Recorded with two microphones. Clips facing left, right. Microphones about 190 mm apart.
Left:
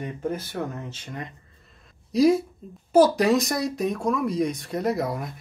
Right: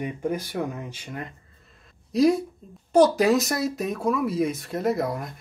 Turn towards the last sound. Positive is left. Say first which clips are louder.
# right 1 dB
turn(degrees=0)  # may be behind; listen again after turning